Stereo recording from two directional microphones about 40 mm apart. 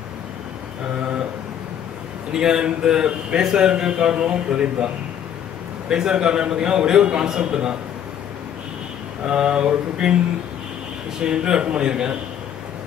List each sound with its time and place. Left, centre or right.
2.3 s a man's voice: centre
5.9 s a man's voice: centre
9.2 s a man's voice: right
11.1 s a man's voice: centre